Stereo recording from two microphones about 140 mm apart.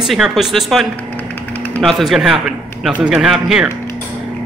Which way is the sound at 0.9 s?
10° left (ahead or behind).